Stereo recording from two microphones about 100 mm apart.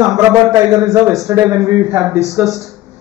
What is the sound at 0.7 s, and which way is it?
A man's voice, 35° right (ahead or behind).